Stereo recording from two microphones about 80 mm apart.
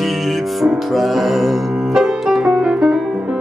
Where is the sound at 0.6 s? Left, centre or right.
Centre.